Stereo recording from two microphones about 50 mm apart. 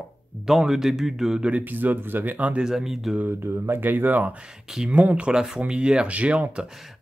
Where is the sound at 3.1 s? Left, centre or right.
Right.